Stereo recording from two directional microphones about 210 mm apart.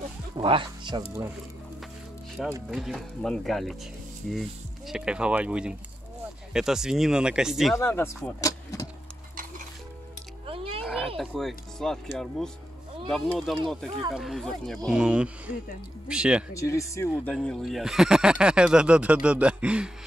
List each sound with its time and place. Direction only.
0.4 s speech: 25° right (ahead or behind)
2.4 s speech: centre (ahead or behind)
7.7 s speech: 10° left (ahead or behind)
10.4 s a sound: 25° right (ahead or behind)
10.8 s a sound: centre (ahead or behind)
11.1 s speech: centre (ahead or behind)
13.1 s speech: centre (ahead or behind)
16.5 s speech: 15° left (ahead or behind)
17.1 s speech: centre (ahead or behind)